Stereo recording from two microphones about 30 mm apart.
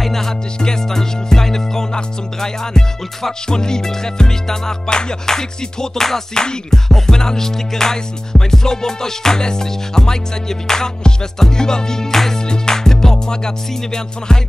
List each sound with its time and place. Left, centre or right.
0.0 s music: centre